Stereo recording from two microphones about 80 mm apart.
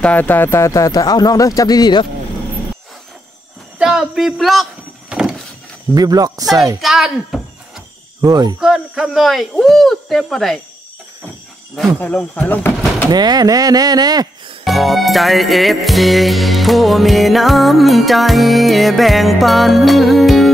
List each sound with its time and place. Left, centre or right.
0.0 s speech: left
0.6 s speech: left
3.7 s music: centre
5.1 s a sound: centre
5.9 s speech: right
6.8 s speech: centre
8.2 s speech: right
8.5 s music: centre
12.0 s speech: centre
13.1 s speech: right
14.6 s music: centre